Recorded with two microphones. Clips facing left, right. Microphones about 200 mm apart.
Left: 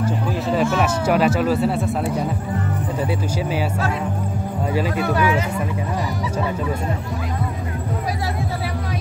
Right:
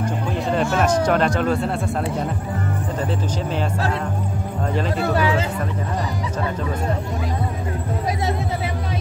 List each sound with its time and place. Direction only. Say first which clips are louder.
0.0 s speech: left 1 dB; 5° left (ahead or behind)
4.9 s speech: right 2 dB; 30° right (ahead or behind)